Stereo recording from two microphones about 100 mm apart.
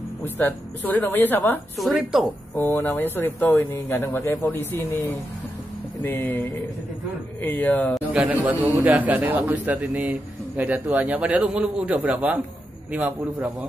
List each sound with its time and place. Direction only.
0.2 s speech: 20° left (ahead or behind)
1.8 s a woman's voice: centre (ahead or behind)
2.5 s speech: 20° left (ahead or behind)
8.1 s a man's voice: 10° right (ahead or behind)